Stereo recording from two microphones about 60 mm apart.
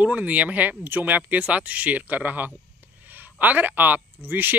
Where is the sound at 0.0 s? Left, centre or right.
Right.